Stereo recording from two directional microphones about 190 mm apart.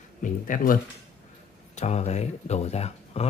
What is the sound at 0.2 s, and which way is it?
Speech, 45° left (ahead or behind).